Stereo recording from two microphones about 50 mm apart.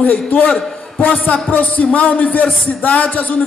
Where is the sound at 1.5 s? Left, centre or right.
Left.